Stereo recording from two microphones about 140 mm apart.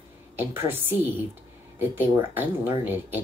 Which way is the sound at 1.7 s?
15° right (ahead or behind).